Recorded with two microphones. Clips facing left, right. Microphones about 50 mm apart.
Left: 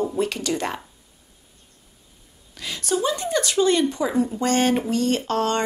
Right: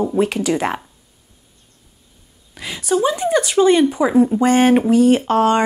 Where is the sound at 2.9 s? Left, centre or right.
Right.